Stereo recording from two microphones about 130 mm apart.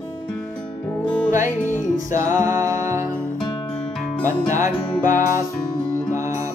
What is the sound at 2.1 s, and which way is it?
Music, 25° right (ahead or behind).